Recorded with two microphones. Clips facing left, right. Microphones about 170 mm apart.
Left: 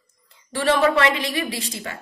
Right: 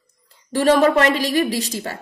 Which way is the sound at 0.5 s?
40° right (ahead or behind).